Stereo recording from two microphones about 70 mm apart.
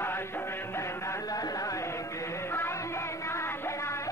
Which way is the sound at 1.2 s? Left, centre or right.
Left.